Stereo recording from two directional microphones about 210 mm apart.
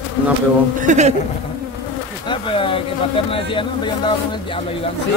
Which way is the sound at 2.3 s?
25° left (ahead or behind).